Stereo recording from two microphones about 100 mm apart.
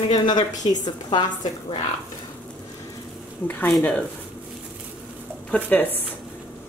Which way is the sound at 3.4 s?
15° left (ahead or behind).